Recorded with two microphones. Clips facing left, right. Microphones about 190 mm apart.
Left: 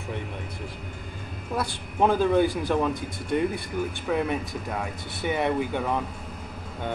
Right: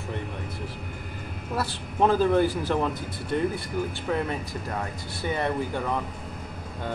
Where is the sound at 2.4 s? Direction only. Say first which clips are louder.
Left 1 dB; 10° left (ahead or behind).